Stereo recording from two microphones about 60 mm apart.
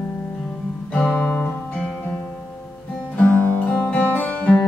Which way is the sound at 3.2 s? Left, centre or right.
Centre.